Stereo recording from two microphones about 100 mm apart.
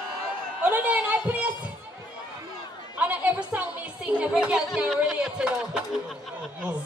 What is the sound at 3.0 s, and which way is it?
Chatter, 15° right (ahead or behind).